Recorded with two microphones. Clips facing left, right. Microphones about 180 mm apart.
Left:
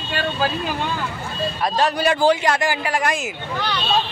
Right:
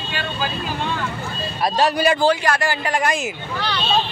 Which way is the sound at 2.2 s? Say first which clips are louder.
Left 1 dB; 20° left (ahead or behind).